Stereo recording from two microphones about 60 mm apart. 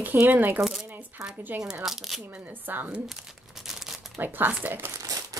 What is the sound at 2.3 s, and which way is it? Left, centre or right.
Speech, right.